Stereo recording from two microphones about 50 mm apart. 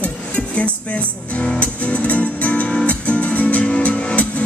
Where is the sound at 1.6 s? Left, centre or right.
Left.